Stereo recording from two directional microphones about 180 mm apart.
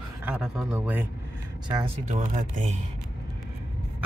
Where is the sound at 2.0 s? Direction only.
45° right (ahead or behind).